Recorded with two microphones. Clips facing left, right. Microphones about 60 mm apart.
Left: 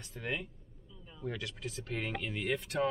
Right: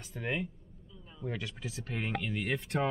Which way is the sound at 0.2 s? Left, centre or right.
Centre.